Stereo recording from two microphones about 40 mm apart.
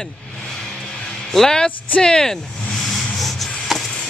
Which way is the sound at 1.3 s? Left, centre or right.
Centre.